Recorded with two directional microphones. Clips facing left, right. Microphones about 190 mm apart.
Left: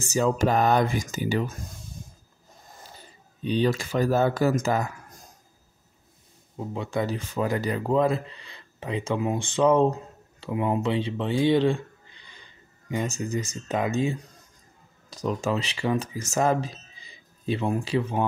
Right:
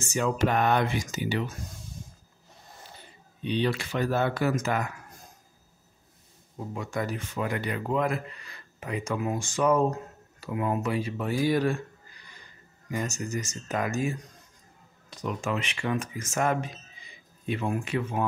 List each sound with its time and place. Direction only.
0.1 s speech: 35° left (ahead or behind)
3.4 s speech: 40° left (ahead or behind)
6.7 s speech: 25° left (ahead or behind)
15.2 s speech: 35° left (ahead or behind)